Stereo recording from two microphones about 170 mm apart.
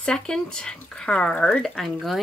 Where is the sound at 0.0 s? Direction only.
5° left (ahead or behind).